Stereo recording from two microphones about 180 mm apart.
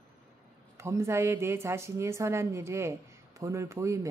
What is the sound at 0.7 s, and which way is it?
A woman's voice, 15° right (ahead or behind).